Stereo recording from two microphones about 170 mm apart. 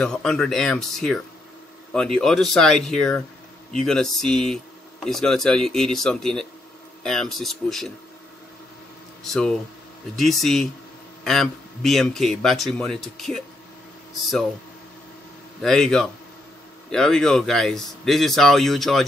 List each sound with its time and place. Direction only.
0.0 s a man's voice: 5° left (ahead or behind)
9.2 s a man's voice: 5° left (ahead or behind)
15.6 s a man's voice: 5° left (ahead or behind)